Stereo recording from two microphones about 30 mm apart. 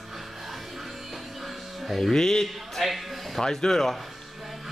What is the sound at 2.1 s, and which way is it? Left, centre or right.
Speech, centre.